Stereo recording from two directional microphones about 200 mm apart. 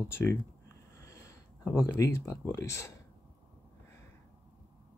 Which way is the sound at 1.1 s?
15° left (ahead or behind).